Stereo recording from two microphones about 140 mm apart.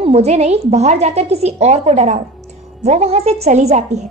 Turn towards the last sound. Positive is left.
turn(degrees=-55)  # may be behind; listen again after turning